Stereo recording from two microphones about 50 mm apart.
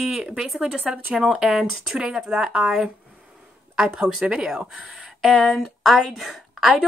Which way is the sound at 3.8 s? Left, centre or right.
Centre.